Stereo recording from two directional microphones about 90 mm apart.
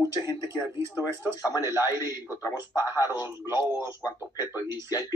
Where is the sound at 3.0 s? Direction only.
40° left (ahead or behind).